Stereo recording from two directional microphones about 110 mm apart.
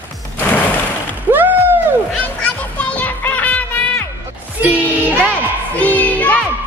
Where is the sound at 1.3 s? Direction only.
20° right (ahead or behind).